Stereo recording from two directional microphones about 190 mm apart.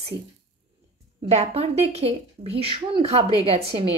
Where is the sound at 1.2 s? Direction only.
35° right (ahead or behind).